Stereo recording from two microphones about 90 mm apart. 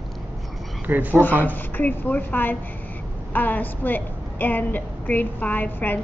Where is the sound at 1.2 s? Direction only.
20° left (ahead or behind).